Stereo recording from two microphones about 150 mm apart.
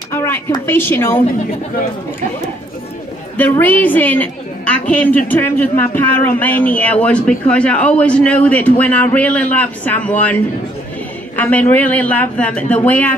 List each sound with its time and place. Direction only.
0.1 s a sound: 15° left (ahead or behind)
0.7 s a woman's voice: 15° left (ahead or behind)
3.3 s a woman's voice: 10° left (ahead or behind)